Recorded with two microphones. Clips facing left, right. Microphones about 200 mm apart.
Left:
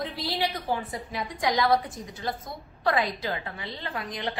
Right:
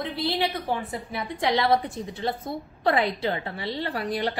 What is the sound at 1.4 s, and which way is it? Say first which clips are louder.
A woman's voice: right 1 dB; 30° right (ahead or behind).